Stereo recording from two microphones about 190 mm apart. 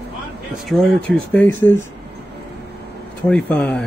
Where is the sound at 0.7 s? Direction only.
5° left (ahead or behind).